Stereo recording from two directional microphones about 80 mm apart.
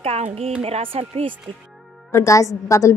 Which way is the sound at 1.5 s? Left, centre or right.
Centre.